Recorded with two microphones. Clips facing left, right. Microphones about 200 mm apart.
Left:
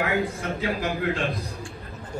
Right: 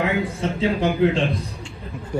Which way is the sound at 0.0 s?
25° right (ahead or behind).